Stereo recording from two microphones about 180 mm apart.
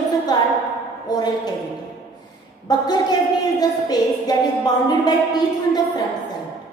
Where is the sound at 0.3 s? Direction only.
25° left (ahead or behind).